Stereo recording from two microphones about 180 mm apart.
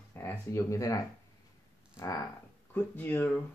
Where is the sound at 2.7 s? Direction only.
10° left (ahead or behind).